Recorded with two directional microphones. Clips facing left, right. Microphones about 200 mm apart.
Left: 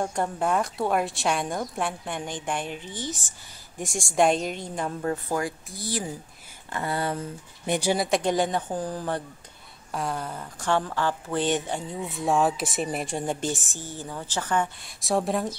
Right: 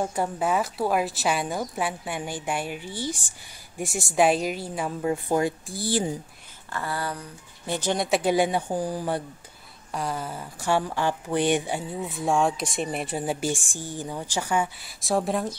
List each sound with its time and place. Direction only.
0.0 s speech: 5° right (ahead or behind)
5.3 s speech: 25° right (ahead or behind)
6.7 s speech: 20° left (ahead or behind)
7.9 s speech: centre (ahead or behind)
9.8 s speech: centre (ahead or behind)